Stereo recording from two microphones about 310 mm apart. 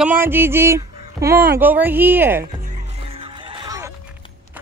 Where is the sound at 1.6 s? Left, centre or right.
Centre.